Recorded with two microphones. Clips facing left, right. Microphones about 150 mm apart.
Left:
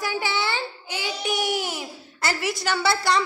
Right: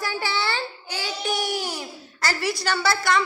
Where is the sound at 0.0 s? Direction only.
20° left (ahead or behind).